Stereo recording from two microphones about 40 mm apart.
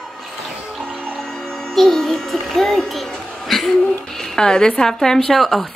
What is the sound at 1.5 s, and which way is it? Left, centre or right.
A child's voice, centre.